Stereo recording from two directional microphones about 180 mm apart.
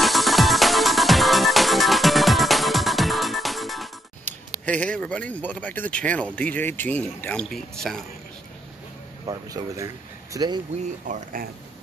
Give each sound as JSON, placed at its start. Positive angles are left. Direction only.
{"t": 0.0, "sound": "music", "side_deg": 0}
{"t": 4.6, "sound": "speech", "side_deg": 5}
{"t": 9.2, "sound": "speech", "side_deg": -20}
{"t": 11.1, "sound": "speech", "side_deg": -45}